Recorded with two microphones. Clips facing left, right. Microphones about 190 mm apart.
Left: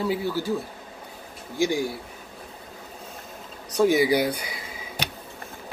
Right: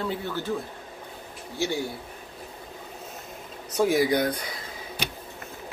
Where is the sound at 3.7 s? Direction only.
5° right (ahead or behind).